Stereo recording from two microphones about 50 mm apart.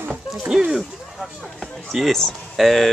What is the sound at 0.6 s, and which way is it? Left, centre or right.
Speech, centre.